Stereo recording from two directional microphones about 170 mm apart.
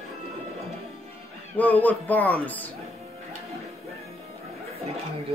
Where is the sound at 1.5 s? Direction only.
10° left (ahead or behind).